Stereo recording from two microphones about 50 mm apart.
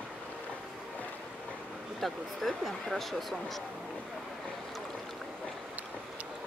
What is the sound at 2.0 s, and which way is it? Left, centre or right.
Speech, centre.